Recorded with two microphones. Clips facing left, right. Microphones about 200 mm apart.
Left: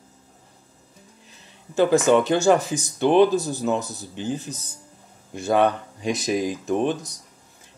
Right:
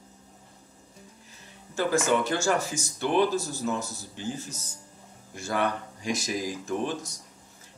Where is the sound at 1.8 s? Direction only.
20° left (ahead or behind).